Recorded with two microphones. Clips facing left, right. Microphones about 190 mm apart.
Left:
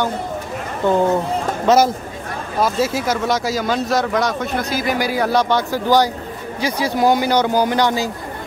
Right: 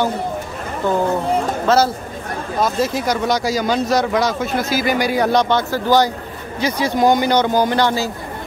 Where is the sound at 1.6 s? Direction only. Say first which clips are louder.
Left 3 dB; 15° left (ahead or behind).